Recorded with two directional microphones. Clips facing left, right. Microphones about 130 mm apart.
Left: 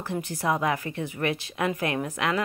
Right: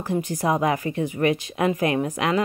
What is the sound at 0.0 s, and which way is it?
Speech, 15° right (ahead or behind).